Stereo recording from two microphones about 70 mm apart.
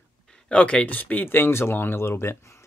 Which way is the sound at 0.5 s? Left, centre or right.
Centre.